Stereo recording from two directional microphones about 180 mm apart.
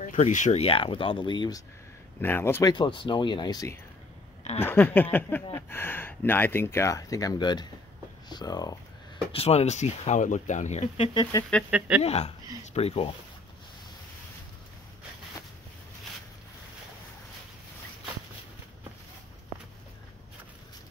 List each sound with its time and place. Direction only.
0.0 s speech: 45° left (ahead or behind); by 1.6 s 25° left (ahead or behind)
2.2 s speech: 15° left (ahead or behind)
2.7 s speech: 25° left (ahead or behind)
9.3 s speech: 35° left (ahead or behind)
11.5 s speech: 5° left (ahead or behind)
12.0 s speech: 35° left (ahead or behind)